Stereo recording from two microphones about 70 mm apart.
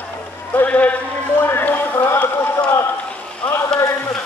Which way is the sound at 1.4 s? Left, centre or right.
Left.